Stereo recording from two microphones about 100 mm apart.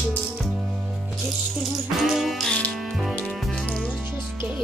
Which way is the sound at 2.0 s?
Centre (ahead or behind).